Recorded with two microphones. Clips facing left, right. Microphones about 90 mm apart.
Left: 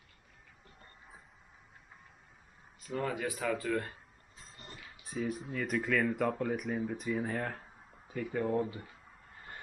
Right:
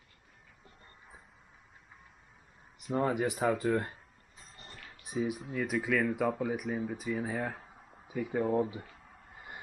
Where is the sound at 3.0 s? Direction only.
25° right (ahead or behind).